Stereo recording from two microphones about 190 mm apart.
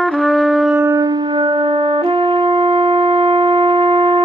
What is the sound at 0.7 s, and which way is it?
Music, 10° right (ahead or behind).